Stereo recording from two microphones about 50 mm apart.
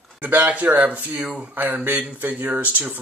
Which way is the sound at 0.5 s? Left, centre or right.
Right.